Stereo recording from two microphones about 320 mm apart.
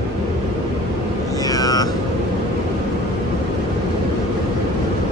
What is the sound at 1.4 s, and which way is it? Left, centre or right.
Music, centre.